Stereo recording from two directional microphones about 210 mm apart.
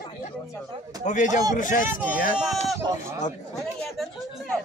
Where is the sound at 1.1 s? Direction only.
35° left (ahead or behind).